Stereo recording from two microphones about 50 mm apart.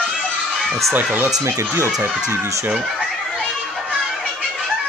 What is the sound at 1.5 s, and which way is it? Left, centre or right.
Speech, right.